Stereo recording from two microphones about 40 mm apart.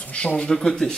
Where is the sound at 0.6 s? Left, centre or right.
Centre.